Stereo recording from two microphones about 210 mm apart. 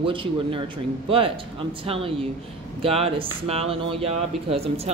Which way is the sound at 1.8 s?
25° right (ahead or behind).